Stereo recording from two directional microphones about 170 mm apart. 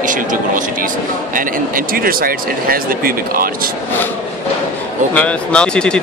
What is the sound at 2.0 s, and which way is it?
Speech, 60° right (ahead or behind).